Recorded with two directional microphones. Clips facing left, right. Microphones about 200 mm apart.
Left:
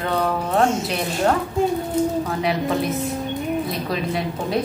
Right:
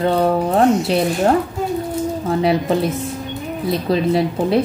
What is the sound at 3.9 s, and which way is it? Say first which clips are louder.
Speech: right 8 dB; 30° right (ahead or behind).